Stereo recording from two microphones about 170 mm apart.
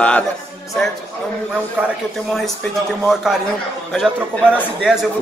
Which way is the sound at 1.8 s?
10° right (ahead or behind).